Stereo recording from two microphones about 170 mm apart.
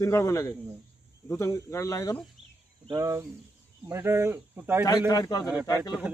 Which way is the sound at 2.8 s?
20° right (ahead or behind).